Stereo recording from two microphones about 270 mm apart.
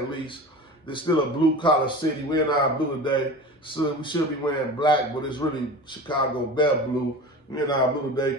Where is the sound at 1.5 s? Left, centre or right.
Centre.